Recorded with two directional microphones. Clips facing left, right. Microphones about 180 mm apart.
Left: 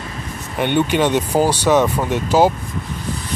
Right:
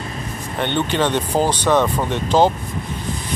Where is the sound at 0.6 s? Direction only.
10° left (ahead or behind).